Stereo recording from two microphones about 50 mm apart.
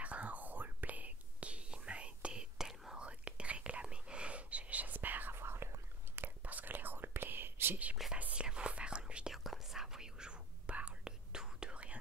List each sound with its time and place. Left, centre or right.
0.0 s whispering: right
2.5 s whispering: centre
3.1 s whispering: right
5.3 s whispering: right
6.4 s whispering: right
8.4 s whispering: right
9.3 s whispering: centre; by 12.0 s right